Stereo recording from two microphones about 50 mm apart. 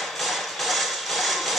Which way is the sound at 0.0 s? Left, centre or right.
Centre.